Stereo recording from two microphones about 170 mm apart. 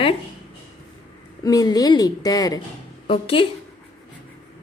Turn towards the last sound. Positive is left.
turn(degrees=30)  # may be behind; listen again after turning